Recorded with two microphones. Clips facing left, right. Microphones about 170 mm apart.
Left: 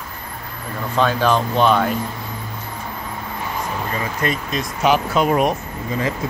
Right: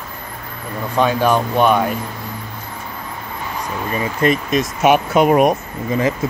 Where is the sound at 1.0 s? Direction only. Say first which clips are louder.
Right 2 dB; 10° right (ahead or behind).